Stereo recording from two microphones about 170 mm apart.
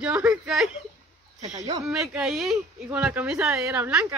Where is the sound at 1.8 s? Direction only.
5° right (ahead or behind).